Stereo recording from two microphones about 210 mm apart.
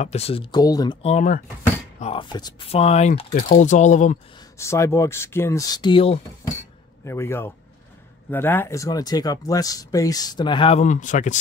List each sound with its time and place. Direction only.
0.0 s speech: 30° left (ahead or behind)
1.0 s speech: 35° left (ahead or behind)
4.6 s speech: 15° left (ahead or behind)
7.1 s speech: 10° left (ahead or behind); by 11.3 s 35° left (ahead or behind)